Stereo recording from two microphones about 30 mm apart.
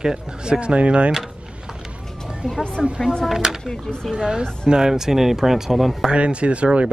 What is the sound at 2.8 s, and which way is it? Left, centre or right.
Speech, centre.